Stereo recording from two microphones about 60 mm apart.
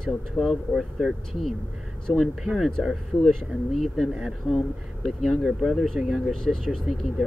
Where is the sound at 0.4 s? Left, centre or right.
Centre.